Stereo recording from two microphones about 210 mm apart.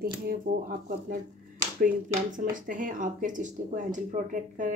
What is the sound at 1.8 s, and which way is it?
A woman's voice, 40° right (ahead or behind).